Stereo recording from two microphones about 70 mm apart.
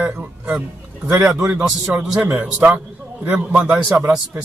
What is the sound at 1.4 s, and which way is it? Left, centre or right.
A man's voice, centre.